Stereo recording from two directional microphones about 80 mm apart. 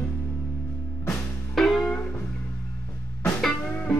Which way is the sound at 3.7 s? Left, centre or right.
Centre.